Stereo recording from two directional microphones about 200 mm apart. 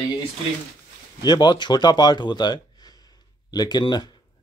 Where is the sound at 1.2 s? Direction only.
20° left (ahead or behind).